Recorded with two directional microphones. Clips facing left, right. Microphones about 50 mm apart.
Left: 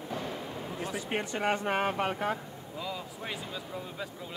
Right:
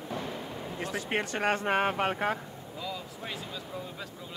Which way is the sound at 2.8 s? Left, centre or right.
Centre.